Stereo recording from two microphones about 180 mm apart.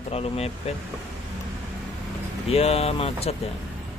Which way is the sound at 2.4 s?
35° left (ahead or behind).